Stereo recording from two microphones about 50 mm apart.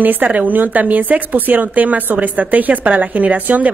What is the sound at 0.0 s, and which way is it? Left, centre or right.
Speech, right.